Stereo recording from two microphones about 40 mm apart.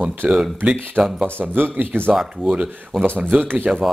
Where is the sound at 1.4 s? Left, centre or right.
Right.